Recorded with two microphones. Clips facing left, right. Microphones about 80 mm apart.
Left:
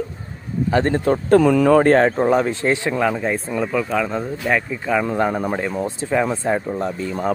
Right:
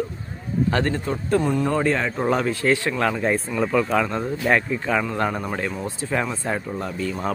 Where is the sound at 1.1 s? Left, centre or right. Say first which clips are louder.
Left 8 dB; left.